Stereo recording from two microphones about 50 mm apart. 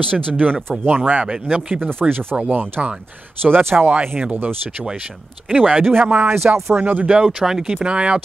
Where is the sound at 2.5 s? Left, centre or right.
Right.